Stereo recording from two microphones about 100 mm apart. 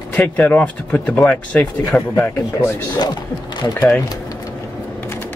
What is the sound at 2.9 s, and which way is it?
Speech, 45° left (ahead or behind).